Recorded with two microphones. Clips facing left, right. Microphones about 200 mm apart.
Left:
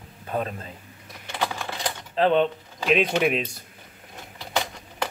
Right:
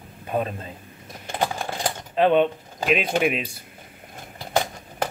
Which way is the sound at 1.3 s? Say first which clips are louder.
Right 3 dB; 45° right (ahead or behind).